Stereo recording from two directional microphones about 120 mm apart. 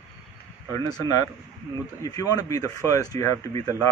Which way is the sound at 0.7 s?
30° left (ahead or behind).